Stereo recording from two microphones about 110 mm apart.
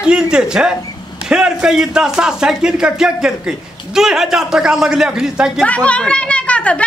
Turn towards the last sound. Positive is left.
turn(degrees=10)  # may be behind; listen again after turning